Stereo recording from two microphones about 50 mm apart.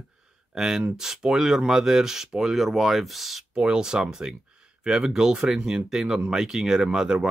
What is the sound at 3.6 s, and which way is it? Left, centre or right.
Speech, centre.